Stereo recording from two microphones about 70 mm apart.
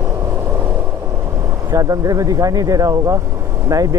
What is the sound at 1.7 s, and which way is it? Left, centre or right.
Speech, right.